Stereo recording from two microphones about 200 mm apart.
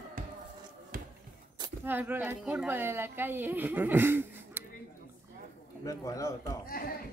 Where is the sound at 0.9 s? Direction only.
40° right (ahead or behind).